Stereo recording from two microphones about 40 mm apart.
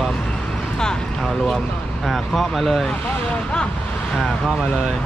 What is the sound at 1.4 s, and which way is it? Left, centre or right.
Speech, centre.